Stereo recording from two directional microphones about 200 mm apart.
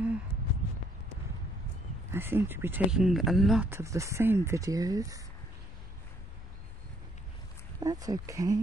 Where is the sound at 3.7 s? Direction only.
15° right (ahead or behind).